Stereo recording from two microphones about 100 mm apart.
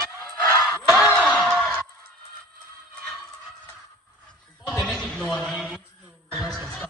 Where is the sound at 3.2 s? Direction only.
5° left (ahead or behind).